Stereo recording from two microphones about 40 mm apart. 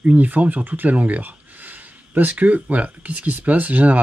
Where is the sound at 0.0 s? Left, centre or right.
Right.